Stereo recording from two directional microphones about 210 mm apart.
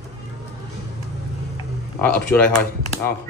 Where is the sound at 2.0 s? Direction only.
10° left (ahead or behind).